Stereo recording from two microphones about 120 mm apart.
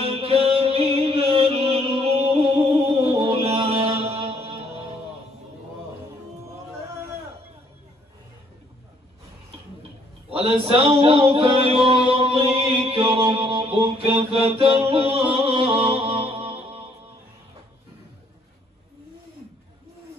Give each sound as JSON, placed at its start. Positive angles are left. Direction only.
{"t": 0.0, "sound": "music", "side_deg": -55}
{"t": 10.3, "sound": "a sound", "side_deg": -50}
{"t": 13.3, "sound": "mantra", "side_deg": -50}